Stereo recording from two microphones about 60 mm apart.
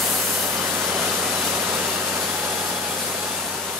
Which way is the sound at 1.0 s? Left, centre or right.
Right.